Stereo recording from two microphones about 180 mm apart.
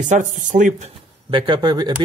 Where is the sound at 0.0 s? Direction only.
45° right (ahead or behind).